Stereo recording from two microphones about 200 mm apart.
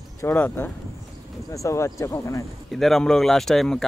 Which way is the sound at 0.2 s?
10° left (ahead or behind).